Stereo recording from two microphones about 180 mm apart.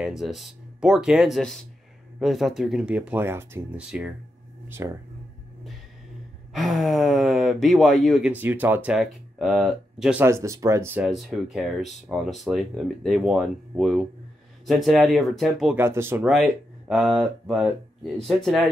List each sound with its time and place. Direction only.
0.0 s speech: centre (ahead or behind)
6.5 s speech: centre (ahead or behind)
15.8 s speech: 15° right (ahead or behind)